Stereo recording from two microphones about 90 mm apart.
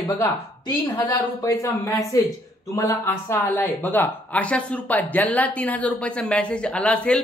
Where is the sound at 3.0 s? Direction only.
25° left (ahead or behind).